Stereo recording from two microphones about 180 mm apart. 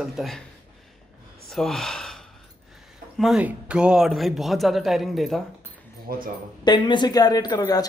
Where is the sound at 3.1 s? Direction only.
Centre (ahead or behind).